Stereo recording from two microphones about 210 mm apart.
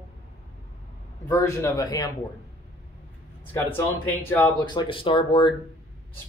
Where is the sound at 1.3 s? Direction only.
15° left (ahead or behind).